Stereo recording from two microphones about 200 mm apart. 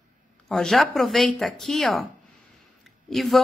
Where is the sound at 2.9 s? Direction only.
Centre (ahead or behind).